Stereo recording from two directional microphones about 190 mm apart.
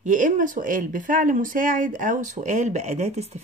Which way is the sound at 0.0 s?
40° right (ahead or behind).